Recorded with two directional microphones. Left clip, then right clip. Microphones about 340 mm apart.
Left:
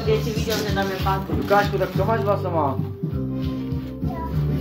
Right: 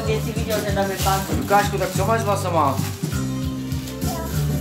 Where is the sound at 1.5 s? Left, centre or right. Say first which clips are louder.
Right 1 dB; centre.